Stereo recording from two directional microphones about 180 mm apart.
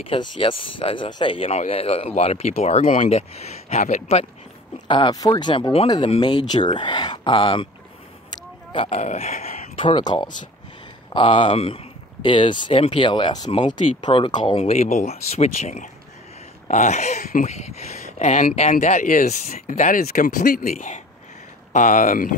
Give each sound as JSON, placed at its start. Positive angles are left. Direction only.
{"t": 0.1, "sound": "speech", "side_deg": 30}
{"t": 4.8, "sound": "speech", "side_deg": 25}
{"t": 14.6, "sound": "speech", "side_deg": 35}